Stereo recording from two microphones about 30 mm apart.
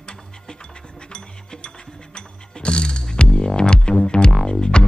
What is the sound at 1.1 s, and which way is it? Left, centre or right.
Music, left.